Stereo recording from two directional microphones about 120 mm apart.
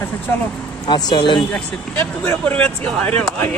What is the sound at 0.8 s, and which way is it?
Speech, 35° left (ahead or behind).